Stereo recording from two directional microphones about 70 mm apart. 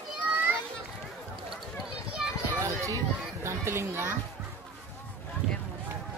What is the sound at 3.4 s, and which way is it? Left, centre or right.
Speech, right.